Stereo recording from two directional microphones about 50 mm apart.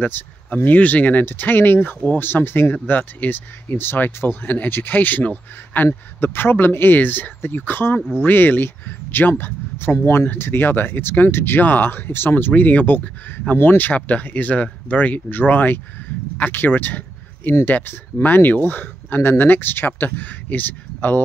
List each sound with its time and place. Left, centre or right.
0.0 s speech: left
2.2 s speech: left
2.7 s speech: left
6.2 s speech: left